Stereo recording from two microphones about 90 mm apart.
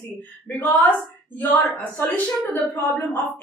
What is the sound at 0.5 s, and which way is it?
A woman's voice, 20° left (ahead or behind).